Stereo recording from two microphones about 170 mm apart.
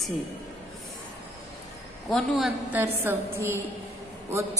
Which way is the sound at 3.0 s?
15° right (ahead or behind).